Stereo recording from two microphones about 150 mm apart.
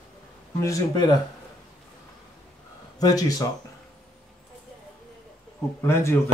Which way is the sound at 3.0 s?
25° left (ahead or behind).